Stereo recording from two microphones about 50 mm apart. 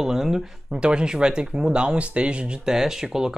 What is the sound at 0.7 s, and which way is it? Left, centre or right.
Speech, centre.